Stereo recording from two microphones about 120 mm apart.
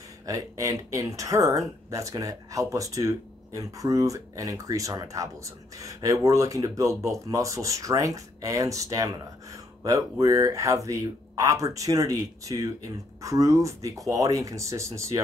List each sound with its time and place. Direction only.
0.3 s speech: 30° right (ahead or behind)